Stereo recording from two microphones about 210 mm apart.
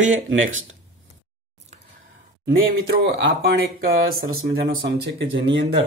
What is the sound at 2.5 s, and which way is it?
Speech, 55° right (ahead or behind).